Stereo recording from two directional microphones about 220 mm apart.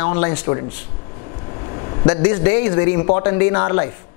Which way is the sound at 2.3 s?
20° left (ahead or behind).